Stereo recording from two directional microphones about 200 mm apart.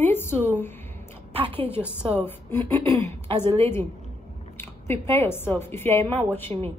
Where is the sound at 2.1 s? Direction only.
10° left (ahead or behind).